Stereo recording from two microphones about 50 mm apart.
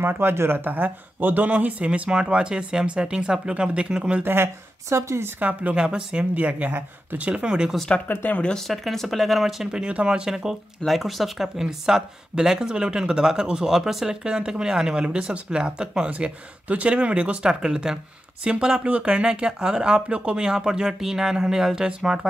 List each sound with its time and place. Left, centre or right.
0.0 s speech: right
1.5 s speech: right
4.2 s speech: right
4.8 s speech: right
5.4 s speech: right
5.8 s speech: centre
6.3 s speech: right
8.1 s speech: left
8.6 s speech: centre
9.7 s speech: centre
10.9 s speech: centre
16.1 s speech: right